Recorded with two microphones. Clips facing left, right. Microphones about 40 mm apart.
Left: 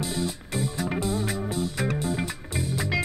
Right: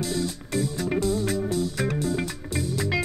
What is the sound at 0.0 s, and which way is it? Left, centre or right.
Music, centre.